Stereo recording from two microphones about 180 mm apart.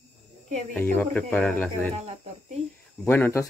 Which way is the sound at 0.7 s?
10° left (ahead or behind).